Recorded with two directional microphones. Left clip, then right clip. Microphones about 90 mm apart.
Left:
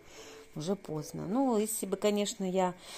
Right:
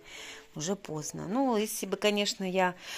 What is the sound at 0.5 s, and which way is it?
Speech, 25° left (ahead or behind).